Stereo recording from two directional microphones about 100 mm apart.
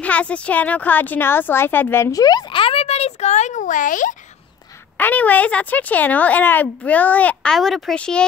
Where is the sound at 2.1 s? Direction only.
40° left (ahead or behind).